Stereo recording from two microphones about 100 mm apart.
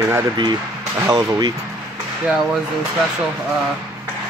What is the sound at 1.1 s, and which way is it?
Speech, 40° right (ahead or behind).